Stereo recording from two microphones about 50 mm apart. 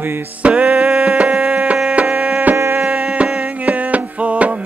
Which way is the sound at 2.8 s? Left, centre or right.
Centre.